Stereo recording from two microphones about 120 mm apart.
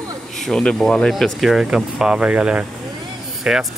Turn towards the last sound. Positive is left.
turn(degrees=-5)  # may be behind; listen again after turning